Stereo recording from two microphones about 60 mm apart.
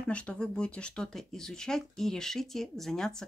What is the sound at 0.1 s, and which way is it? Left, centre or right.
Speech, centre.